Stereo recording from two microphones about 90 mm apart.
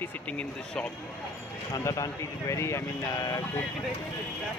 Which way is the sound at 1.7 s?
35° left (ahead or behind).